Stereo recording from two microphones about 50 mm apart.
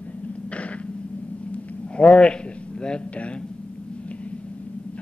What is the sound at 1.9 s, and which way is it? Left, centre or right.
A man's voice, left.